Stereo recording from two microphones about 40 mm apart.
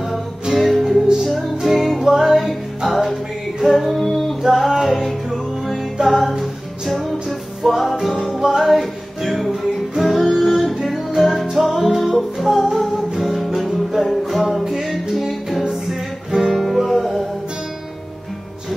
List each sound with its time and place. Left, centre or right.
0.1 s music: centre
3.6 s singing: centre
4.4 s music: centre
16.5 s music: centre